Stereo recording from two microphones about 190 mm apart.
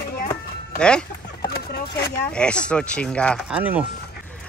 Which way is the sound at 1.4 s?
55° left (ahead or behind).